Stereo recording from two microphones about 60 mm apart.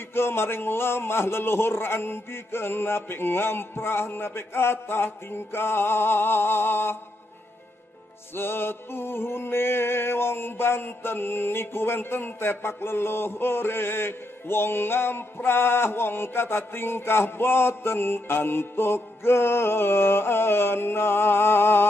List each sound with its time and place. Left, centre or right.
0.1 s music: left
8.4 s music: left